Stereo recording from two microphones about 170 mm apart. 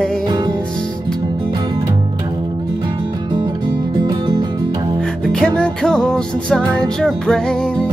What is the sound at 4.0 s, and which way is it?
Music, 25° right (ahead or behind).